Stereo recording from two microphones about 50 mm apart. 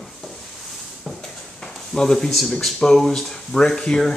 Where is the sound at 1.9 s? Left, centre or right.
Centre.